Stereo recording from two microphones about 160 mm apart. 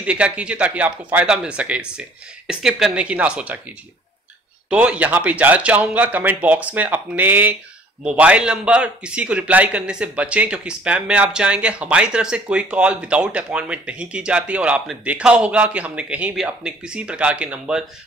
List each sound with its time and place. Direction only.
0.0 s a man's voice: 5° right (ahead or behind)